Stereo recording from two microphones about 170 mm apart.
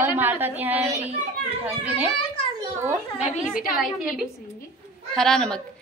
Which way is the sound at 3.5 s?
55° left (ahead or behind).